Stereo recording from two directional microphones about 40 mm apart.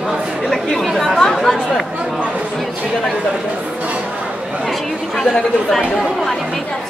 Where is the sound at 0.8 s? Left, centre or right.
Centre.